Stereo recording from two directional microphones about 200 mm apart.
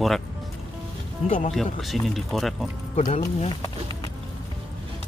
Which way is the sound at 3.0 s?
40° left (ahead or behind).